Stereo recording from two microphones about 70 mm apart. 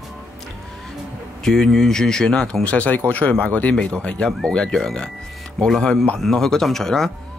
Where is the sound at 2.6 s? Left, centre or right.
Centre.